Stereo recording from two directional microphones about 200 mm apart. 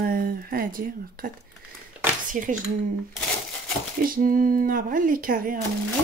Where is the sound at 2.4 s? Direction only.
40° right (ahead or behind).